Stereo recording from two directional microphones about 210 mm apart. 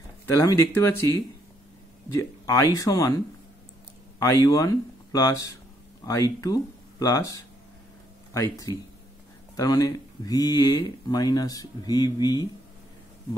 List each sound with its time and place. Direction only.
0.4 s speech: 10° left (ahead or behind)
2.1 s speech: 15° left (ahead or behind)
4.2 s speech: 15° left (ahead or behind)